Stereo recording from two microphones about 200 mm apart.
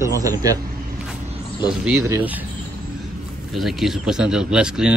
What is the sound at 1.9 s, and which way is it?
Speech, 10° right (ahead or behind).